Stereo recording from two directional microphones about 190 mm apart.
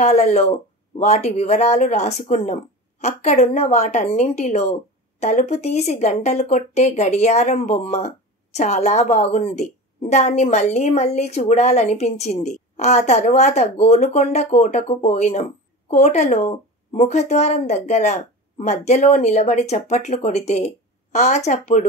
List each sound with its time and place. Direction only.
0.0 s speech: 35° left (ahead or behind)